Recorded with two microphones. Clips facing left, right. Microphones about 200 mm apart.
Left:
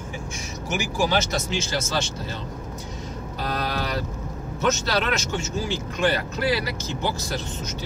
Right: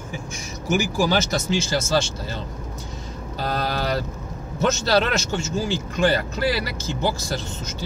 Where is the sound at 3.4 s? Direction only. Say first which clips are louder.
Right 2 dB; 35° right (ahead or behind).